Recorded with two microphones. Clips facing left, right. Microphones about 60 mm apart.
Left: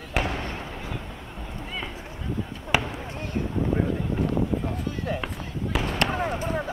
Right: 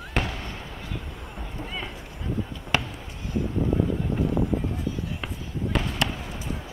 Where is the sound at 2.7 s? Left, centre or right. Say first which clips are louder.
Left 2 dB; centre.